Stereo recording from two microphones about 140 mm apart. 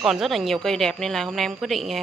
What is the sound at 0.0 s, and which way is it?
A woman's voice, centre (ahead or behind).